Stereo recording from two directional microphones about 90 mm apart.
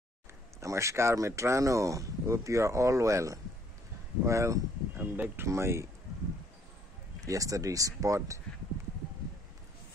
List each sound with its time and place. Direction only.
0.6 s speech: 35° right (ahead or behind)
5.1 s speech: 20° right (ahead or behind)
5.5 s speech: 30° right (ahead or behind)
7.2 s speech: 40° right (ahead or behind)